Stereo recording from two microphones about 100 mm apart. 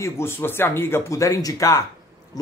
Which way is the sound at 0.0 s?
25° left (ahead or behind).